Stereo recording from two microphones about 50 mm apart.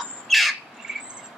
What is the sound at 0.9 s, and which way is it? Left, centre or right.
Cricket, centre.